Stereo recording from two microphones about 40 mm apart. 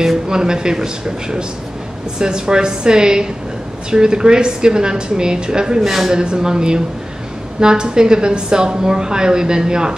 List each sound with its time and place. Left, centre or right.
0.3 s a woman's voice: centre
5.8 s speech: centre
6.1 s a woman's voice: centre